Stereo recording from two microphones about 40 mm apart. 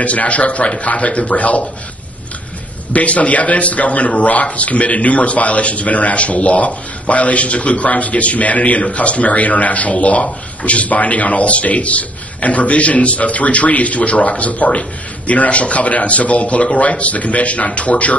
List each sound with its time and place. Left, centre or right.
0.0 s a man's voice: left
2.9 s a man's voice: left